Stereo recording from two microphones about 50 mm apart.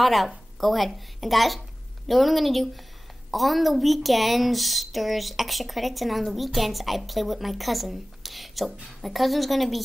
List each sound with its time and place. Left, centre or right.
0.0 s a woman's voice: centre